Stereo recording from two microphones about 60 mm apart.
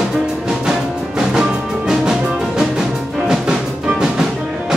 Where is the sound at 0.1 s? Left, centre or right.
Centre.